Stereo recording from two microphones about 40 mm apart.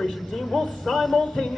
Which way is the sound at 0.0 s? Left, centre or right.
Centre.